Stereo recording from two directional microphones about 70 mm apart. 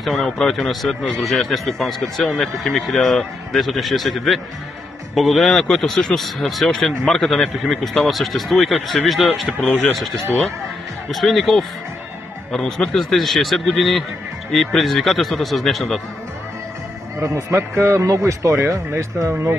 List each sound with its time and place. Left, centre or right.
0.0 s speech: centre
9.6 s speech: centre
11.1 s speech: centre
17.2 s speech: right